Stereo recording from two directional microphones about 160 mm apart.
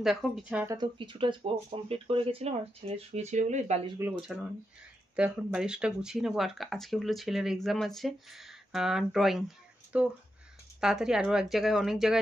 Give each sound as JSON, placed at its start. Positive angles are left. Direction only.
{"t": 0.0, "sound": "speech", "side_deg": -5}
{"t": 0.7, "sound": "speech", "side_deg": -30}
{"t": 4.2, "sound": "speech", "side_deg": 0}